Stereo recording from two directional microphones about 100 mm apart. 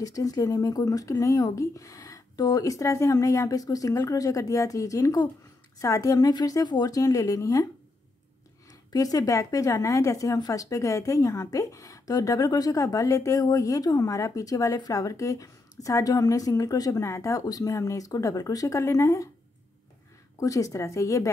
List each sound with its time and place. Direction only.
0.0 s a woman's voice: 35° left (ahead or behind)
8.6 s a woman's voice: 40° left (ahead or behind)
20.3 s a woman's voice: 35° left (ahead or behind)